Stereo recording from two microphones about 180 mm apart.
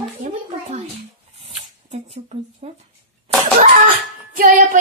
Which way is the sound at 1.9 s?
35° right (ahead or behind).